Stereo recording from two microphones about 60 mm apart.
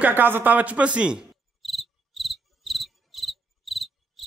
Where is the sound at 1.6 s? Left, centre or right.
Centre.